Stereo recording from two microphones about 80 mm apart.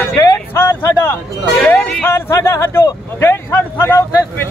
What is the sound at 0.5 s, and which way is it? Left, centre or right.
Speech, left.